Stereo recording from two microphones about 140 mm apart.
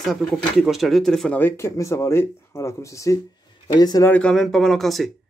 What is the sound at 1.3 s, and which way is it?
Speech, 15° left (ahead or behind).